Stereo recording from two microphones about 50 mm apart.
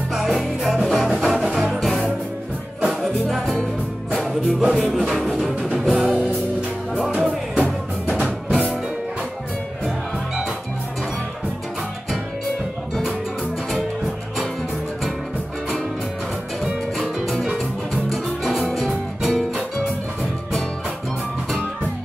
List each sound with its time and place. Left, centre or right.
0.1 s music: centre
8.2 s music: centre
17.0 s music: centre